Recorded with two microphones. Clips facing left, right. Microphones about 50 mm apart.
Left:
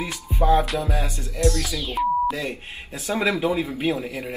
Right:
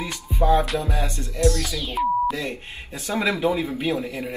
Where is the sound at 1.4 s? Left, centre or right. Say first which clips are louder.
Right 1 dB; centre.